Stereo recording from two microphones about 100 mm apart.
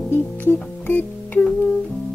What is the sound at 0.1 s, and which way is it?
Music, 20° left (ahead or behind).